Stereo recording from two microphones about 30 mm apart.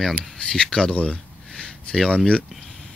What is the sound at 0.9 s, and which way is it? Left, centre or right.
Speech, left.